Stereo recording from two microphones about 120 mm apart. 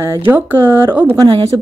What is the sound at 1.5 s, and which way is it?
Speech, 30° right (ahead or behind).